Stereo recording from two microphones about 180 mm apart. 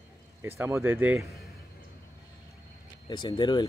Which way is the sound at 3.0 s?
25° left (ahead or behind).